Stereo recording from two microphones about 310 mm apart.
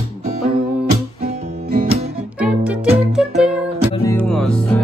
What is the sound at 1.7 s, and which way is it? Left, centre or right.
Music, right.